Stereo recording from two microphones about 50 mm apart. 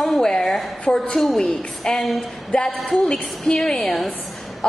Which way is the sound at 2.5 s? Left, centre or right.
Left.